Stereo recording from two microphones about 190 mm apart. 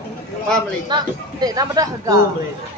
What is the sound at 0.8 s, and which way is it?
Speech, 20° right (ahead or behind).